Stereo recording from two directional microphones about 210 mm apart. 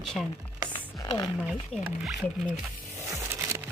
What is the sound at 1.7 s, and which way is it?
Speech, centre (ahead or behind).